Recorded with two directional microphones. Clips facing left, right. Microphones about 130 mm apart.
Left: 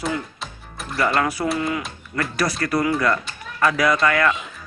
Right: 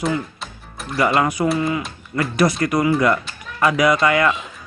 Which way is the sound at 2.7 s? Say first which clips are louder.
Right 1 dB; 20° right (ahead or behind).